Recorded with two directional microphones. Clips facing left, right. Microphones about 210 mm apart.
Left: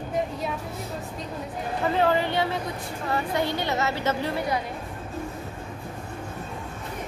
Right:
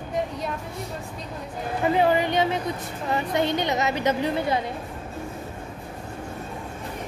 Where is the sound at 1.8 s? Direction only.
15° right (ahead or behind).